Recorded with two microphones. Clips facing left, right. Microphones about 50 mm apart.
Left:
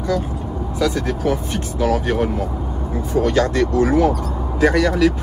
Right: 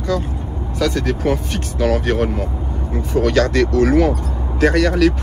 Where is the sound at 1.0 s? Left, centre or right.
Right.